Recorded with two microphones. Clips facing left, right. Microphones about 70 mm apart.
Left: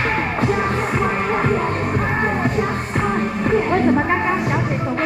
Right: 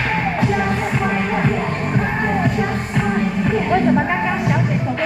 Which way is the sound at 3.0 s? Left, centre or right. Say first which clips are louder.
Right 1 dB; left.